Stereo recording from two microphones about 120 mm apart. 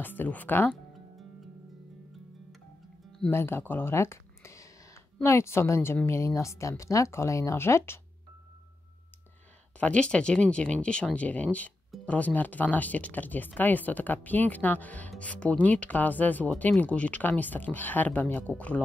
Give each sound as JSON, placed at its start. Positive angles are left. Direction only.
{"t": 0.0, "sound": "speech", "side_deg": 15}
{"t": 3.3, "sound": "speech", "side_deg": 20}
{"t": 9.8, "sound": "speech", "side_deg": 10}